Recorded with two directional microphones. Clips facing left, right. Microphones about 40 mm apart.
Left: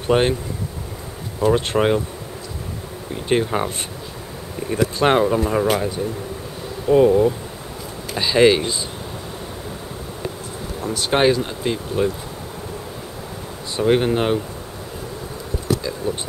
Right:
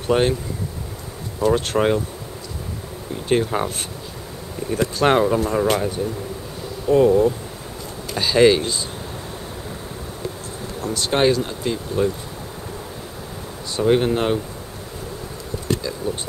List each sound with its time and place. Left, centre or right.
0.1 s speech: centre
1.4 s speech: centre
3.3 s speech: centre
4.9 s speech: centre
6.9 s speech: centre
10.8 s speech: centre
13.7 s speech: centre